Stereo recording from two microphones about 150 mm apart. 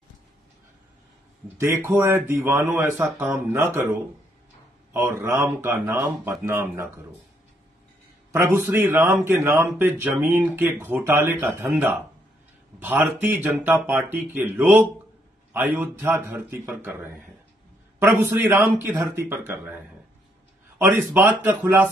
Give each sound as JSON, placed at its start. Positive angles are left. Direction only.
{"t": 1.6, "sound": "a man's voice", "side_deg": -15}
{"t": 4.9, "sound": "a man's voice", "side_deg": -15}
{"t": 8.3, "sound": "a man's voice", "side_deg": -20}